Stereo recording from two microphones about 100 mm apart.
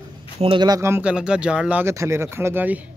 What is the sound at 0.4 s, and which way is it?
Speech, 90° right.